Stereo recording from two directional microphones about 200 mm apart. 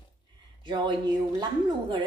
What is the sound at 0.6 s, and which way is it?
Speech, 20° right (ahead or behind).